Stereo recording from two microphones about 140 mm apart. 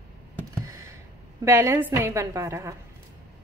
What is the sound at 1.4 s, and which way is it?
A woman's voice, 20° right (ahead or behind).